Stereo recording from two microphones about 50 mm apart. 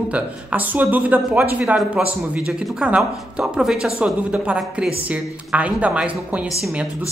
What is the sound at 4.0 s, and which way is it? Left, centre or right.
Speech, right.